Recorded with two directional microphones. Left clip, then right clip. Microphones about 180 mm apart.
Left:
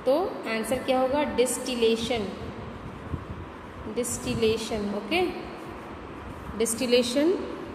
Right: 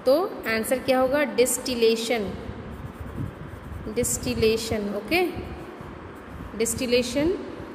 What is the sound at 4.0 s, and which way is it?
A woman's voice, 30° right (ahead or behind).